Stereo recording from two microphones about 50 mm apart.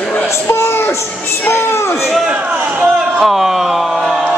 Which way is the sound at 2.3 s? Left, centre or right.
Right.